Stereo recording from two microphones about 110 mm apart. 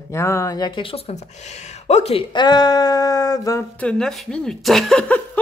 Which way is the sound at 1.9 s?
75° left (ahead or behind).